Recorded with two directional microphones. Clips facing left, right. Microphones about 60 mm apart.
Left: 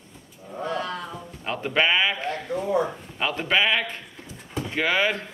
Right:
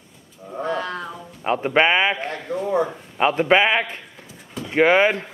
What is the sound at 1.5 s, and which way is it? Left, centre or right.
A man's voice, right.